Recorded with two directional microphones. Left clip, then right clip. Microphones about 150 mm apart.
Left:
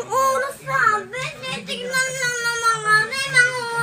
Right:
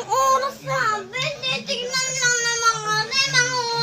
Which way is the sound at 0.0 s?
15° right (ahead or behind).